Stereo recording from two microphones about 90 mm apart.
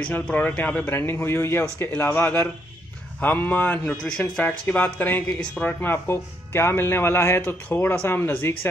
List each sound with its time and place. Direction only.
0.0 s speech: 15° left (ahead or behind)